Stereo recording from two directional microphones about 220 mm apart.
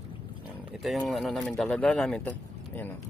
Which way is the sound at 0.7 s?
Centre (ahead or behind).